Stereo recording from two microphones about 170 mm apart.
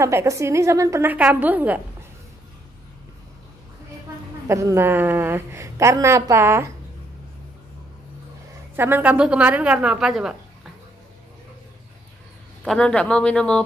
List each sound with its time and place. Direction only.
0.0 s a woman's voice: 15° right (ahead or behind)
4.5 s a woman's voice: 15° right (ahead or behind)
8.7 s a woman's voice: 10° right (ahead or behind)
12.6 s speech: 5° left (ahead or behind)